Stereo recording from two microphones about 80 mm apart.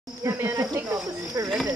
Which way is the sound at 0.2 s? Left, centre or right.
Right.